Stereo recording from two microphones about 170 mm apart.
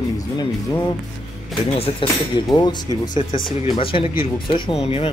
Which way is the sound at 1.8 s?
30° left (ahead or behind).